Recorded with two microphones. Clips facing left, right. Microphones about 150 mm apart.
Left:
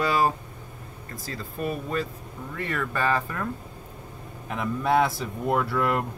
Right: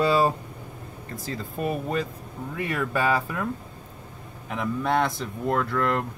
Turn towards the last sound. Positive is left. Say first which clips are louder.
# even
turn(degrees=5)  # may be behind; listen again after turning